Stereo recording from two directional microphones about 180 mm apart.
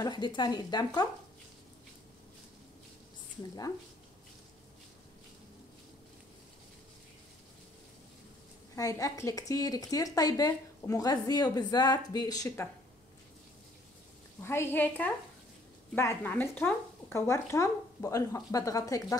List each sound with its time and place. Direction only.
0.0 s a woman's voice: 25° left (ahead or behind)
8.7 s a woman's voice: 20° left (ahead or behind)
14.4 s speech: 15° left (ahead or behind)